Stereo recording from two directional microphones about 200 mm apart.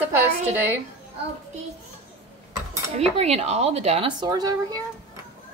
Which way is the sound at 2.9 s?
30° right (ahead or behind).